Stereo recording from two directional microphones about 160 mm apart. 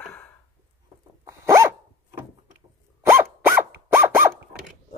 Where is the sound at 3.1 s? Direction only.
15° right (ahead or behind).